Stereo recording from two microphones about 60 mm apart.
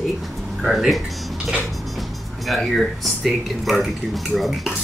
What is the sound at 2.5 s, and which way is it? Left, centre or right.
Speech, centre.